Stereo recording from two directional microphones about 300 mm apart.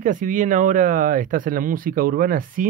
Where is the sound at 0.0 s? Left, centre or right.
Right.